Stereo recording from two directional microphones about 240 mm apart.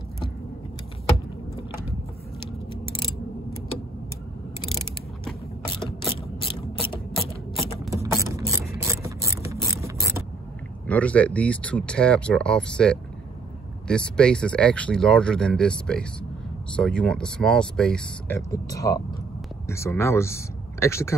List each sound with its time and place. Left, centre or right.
6.0 s ratchet: left
7.9 s mechanisms: centre
9.0 s ratchet: centre
10.9 s speech: centre
18.5 s speech: centre